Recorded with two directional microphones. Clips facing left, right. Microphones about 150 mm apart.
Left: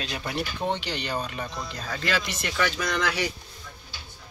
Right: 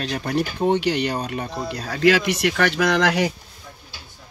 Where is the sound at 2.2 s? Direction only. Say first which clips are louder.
Right 8 dB; 60° right (ahead or behind).